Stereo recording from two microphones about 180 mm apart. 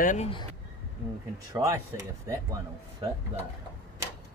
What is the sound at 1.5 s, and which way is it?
Speech, 15° right (ahead or behind).